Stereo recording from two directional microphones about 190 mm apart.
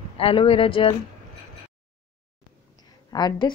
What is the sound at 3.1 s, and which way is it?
Speech, 20° left (ahead or behind).